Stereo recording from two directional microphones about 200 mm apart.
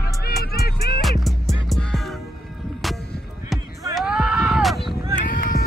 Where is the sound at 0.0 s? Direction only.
50° left (ahead or behind).